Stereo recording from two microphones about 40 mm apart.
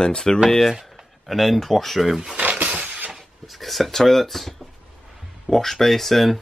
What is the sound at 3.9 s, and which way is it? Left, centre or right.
Speech, centre.